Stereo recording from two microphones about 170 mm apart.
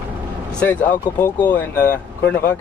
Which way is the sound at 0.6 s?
10° left (ahead or behind).